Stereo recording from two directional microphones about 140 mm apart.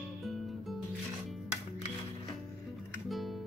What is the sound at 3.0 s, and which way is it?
Music, centre (ahead or behind).